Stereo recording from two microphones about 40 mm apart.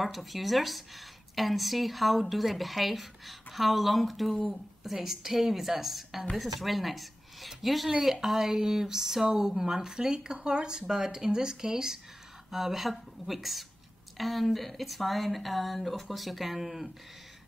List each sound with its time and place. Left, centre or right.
0.0 s speech: centre